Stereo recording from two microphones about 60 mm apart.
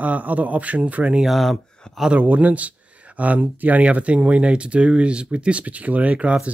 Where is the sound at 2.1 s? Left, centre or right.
Right.